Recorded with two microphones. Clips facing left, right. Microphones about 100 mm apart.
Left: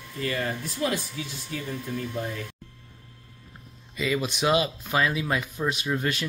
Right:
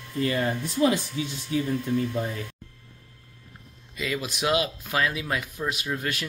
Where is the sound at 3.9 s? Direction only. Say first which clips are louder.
Left 3 dB; centre (ahead or behind).